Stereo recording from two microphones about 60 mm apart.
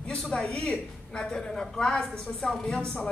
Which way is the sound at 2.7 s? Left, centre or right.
Centre.